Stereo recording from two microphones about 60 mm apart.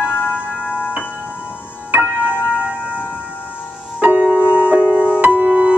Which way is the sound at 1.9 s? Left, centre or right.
Right.